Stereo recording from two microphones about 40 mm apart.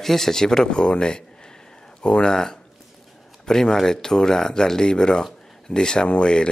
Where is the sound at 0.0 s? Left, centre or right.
Centre.